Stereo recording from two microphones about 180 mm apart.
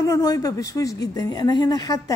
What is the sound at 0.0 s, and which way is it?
A woman's voice, 20° left (ahead or behind).